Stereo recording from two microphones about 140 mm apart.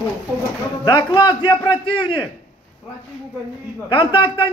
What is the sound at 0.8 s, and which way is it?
A man's voice, 30° left (ahead or behind).